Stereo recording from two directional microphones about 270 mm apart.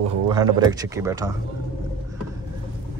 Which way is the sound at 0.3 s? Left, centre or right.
Centre.